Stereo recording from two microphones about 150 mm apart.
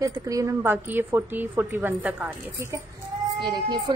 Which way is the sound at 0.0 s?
20° right (ahead or behind).